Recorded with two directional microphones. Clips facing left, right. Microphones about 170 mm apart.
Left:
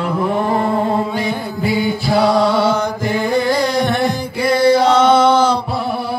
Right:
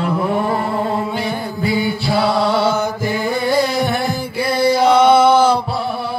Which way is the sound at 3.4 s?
10° right (ahead or behind).